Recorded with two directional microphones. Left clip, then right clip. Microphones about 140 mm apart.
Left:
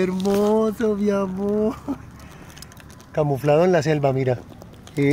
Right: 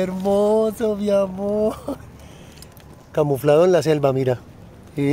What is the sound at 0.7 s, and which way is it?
Speech, 20° right (ahead or behind).